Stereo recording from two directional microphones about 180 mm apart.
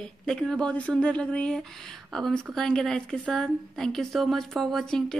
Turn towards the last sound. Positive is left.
turn(degrees=5)  # may be behind; listen again after turning